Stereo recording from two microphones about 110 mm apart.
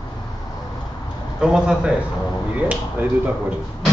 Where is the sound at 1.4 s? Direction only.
10° right (ahead or behind).